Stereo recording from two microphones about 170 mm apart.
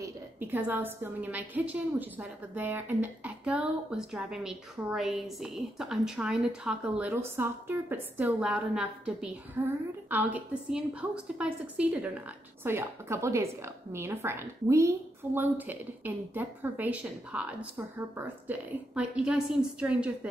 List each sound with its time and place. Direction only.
0.0 s a woman's voice: 10° right (ahead or behind)